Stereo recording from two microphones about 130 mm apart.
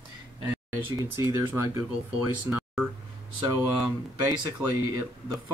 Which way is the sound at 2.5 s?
10° right (ahead or behind).